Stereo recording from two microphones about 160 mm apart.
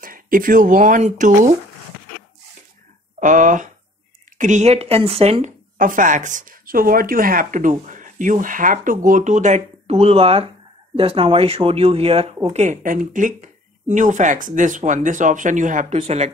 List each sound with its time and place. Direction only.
0.0 s speech: 60° right (ahead or behind)
3.2 s speech: 55° right (ahead or behind)
5.8 s speech: 55° right (ahead or behind); by 12.4 s 40° right (ahead or behind)
12.5 s speech: 50° right (ahead or behind)
15.9 s speech: 40° right (ahead or behind)